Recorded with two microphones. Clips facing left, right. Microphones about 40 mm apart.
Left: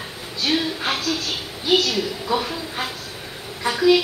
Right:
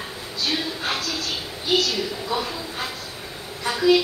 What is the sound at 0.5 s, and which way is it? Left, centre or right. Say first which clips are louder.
Speech: left 3 dB; left.